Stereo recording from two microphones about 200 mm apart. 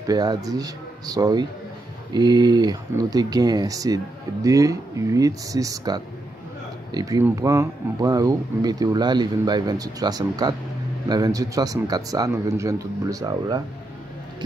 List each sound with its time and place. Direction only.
0.0 s speech: 20° right (ahead or behind)